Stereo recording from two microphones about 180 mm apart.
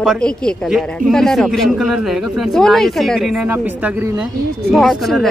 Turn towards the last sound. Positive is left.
turn(degrees=0)  # may be behind; listen again after turning